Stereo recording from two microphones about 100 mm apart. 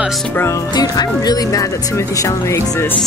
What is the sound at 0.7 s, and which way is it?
Speech, 40° left (ahead or behind).